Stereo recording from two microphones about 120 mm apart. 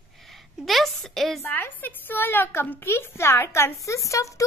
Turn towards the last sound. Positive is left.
turn(degrees=25)  # may be behind; listen again after turning